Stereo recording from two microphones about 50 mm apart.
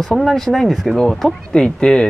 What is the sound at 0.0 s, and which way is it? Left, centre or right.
Speech, centre.